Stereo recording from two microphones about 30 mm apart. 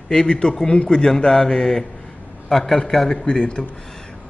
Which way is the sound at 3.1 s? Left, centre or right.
Left.